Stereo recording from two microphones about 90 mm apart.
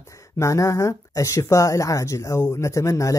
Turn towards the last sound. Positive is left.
turn(degrees=35)  # may be behind; listen again after turning